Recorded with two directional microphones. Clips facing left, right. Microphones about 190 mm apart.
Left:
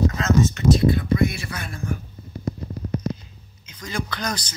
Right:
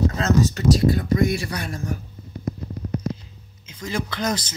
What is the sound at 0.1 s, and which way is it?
Speech, 35° right (ahead or behind).